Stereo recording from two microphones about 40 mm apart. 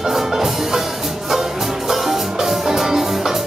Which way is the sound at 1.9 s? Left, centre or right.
Centre.